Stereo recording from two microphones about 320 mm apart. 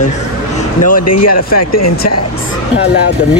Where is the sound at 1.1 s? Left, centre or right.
Left.